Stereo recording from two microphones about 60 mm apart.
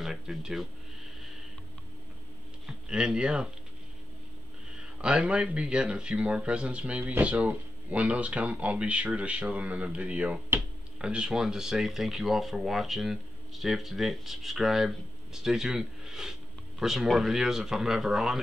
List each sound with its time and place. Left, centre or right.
0.0 s speech: centre
2.6 s speech: centre
4.7 s speech: centre